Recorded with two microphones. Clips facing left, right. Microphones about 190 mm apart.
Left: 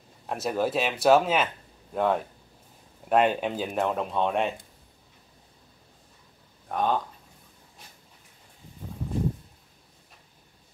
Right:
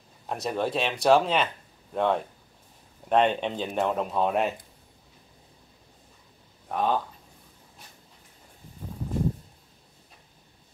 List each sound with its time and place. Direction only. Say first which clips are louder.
0.3 s speech: left 1 dB; 5° left (ahead or behind)
6.7 s speech: even; centre (ahead or behind)